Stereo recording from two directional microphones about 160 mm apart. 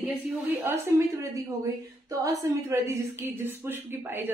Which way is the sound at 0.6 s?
15° right (ahead or behind).